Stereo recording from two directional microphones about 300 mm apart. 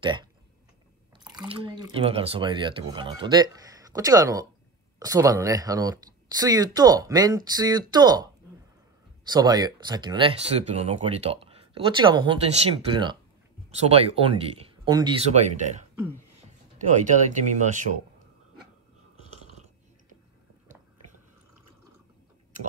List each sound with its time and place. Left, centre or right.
0.0 s speech: centre
1.3 s speech: centre
9.3 s speech: centre